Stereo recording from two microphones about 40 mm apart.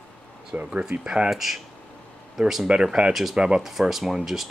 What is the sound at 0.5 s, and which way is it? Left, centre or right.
Speech, right.